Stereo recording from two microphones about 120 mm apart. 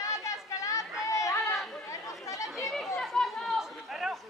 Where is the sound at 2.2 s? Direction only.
25° left (ahead or behind).